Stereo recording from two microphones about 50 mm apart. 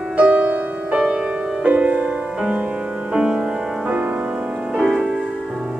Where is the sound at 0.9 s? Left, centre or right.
Centre.